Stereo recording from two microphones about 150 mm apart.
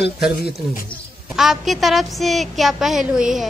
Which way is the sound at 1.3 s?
Centre (ahead or behind).